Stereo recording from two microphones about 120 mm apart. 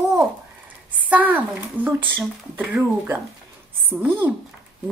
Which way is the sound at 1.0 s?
15° right (ahead or behind).